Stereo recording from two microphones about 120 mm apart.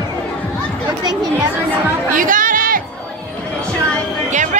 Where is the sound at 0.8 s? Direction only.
35° right (ahead or behind).